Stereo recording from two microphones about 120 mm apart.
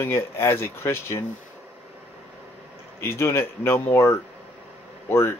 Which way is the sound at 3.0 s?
20° left (ahead or behind).